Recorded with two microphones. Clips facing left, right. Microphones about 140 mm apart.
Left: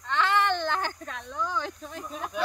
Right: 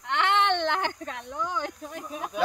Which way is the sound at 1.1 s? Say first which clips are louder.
Even; 15° right (ahead or behind).